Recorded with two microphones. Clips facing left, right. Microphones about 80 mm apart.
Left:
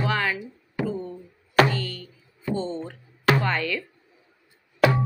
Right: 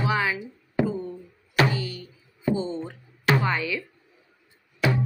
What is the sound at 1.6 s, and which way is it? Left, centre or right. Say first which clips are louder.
Music: even; centre.